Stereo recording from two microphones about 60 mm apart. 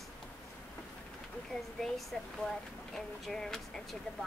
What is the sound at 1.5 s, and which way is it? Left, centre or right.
Speech, centre.